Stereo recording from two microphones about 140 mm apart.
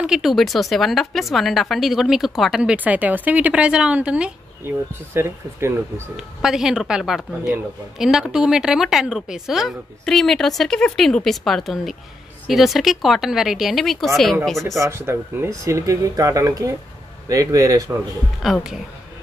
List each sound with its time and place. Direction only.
0.0 s a woman's voice: 5° right (ahead or behind)
6.1 s a woman's voice: 5° right (ahead or behind)
14.8 s speech: 20° right (ahead or behind)
18.4 s a woman's voice: centre (ahead or behind)